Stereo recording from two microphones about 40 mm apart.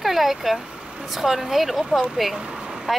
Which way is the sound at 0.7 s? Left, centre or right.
Centre.